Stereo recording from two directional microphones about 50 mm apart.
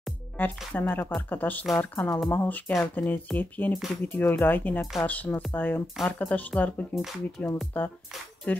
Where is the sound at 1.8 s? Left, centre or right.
Left.